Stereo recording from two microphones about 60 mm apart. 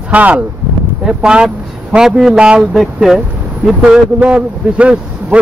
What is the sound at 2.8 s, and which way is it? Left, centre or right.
Speech, centre.